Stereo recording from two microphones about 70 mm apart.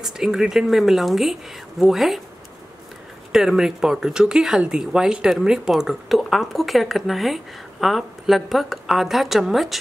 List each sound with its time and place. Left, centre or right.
0.0 s speech: centre
3.3 s speech: centre